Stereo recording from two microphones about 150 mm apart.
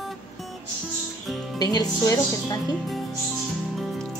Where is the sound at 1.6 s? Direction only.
25° left (ahead or behind).